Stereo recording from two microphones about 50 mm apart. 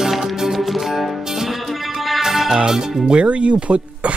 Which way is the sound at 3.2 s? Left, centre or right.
Right.